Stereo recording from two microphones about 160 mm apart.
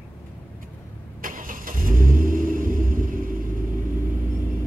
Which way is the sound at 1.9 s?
60° right (ahead or behind).